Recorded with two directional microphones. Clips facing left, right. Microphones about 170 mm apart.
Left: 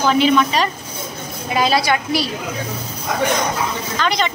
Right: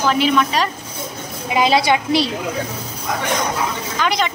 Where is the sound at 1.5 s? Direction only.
20° right (ahead or behind).